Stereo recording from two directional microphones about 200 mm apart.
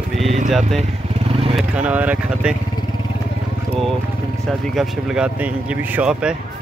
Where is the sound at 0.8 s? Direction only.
30° right (ahead or behind).